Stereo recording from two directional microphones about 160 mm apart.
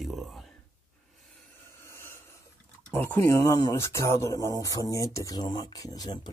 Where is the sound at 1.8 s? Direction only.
15° left (ahead or behind).